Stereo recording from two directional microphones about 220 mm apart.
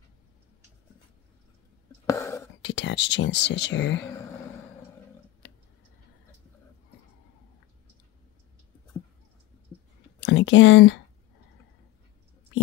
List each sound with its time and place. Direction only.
2.0 s whispering: 15° left (ahead or behind)
2.6 s speech: 55° left (ahead or behind)
10.2 s speech: 55° left (ahead or behind)